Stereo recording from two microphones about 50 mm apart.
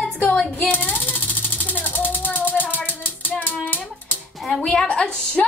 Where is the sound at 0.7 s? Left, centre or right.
Left.